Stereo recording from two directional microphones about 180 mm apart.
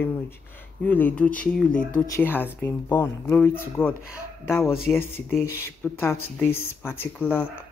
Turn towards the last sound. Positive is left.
turn(degrees=10)  # may be behind; listen again after turning